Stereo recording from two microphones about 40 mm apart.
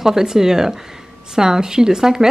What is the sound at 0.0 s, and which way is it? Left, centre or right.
Speech, centre.